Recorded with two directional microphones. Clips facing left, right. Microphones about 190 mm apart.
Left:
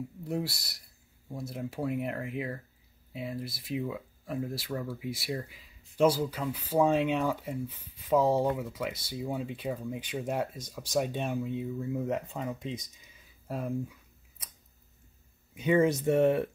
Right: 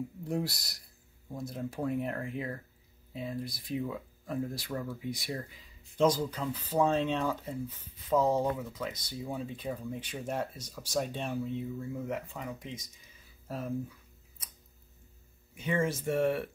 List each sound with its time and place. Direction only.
0.3 s speech: 5° left (ahead or behind)
15.6 s speech: 20° left (ahead or behind)